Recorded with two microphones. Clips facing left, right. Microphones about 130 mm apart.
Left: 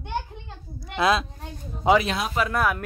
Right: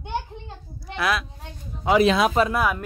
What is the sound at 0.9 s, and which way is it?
A child's voice, 25° left (ahead or behind).